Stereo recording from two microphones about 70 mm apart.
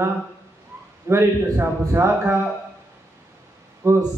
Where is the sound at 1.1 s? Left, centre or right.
Right.